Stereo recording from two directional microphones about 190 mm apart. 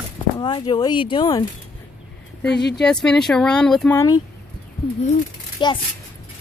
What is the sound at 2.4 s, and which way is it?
Speech, 60° left (ahead or behind).